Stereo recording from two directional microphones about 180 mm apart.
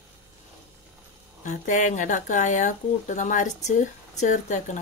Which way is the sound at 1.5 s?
45° left (ahead or behind).